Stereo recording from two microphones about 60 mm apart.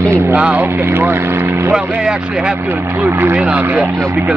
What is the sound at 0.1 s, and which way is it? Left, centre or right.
Speech, right.